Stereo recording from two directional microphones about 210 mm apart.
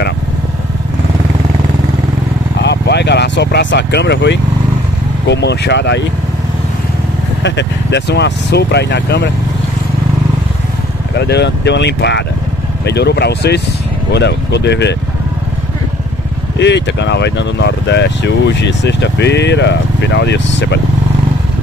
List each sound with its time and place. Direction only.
2.6 s vehicle: 55° left (ahead or behind)
5.3 s speech: 55° left (ahead or behind)
7.4 s speech: 55° left (ahead or behind)
11.1 s speech: 55° left (ahead or behind)
16.5 s speech: 55° left (ahead or behind)